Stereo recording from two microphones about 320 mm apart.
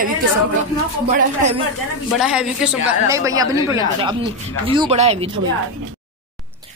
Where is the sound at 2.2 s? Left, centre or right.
Centre.